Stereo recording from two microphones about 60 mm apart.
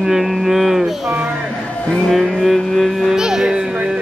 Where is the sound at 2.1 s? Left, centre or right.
Centre.